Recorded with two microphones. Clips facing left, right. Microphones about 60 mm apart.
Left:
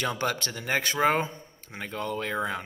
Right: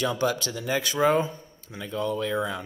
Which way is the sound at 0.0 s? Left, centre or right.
Left.